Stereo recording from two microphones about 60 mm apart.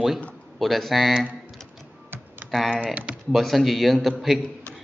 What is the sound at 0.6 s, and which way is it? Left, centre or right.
Speech, centre.